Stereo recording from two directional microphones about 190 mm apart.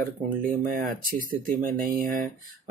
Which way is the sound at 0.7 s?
45° right (ahead or behind).